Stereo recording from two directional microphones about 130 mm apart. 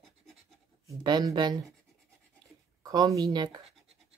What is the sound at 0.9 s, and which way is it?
Speech, 35° right (ahead or behind).